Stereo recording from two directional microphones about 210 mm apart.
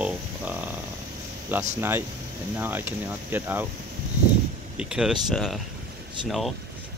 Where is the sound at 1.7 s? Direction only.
10° right (ahead or behind).